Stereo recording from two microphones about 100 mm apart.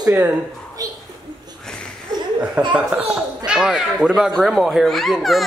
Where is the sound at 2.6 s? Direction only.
10° right (ahead or behind).